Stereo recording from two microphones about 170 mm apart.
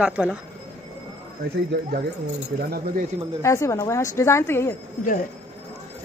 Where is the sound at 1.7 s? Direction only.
85° right.